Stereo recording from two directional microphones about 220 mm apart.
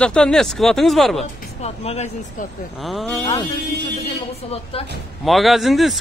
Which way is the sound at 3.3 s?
20° left (ahead or behind).